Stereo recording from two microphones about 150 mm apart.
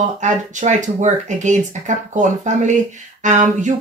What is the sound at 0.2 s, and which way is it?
A woman's voice, 55° right (ahead or behind).